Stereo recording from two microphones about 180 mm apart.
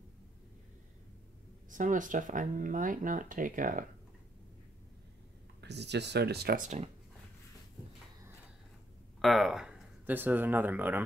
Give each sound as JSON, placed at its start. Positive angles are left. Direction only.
{"t": 1.7, "sound": "speech", "side_deg": -45}
{"t": 5.6, "sound": "speech", "side_deg": -70}
{"t": 9.2, "sound": "speech", "side_deg": 0}